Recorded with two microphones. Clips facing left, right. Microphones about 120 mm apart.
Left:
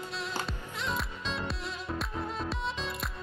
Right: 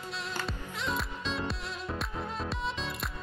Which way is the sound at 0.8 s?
Centre (ahead or behind).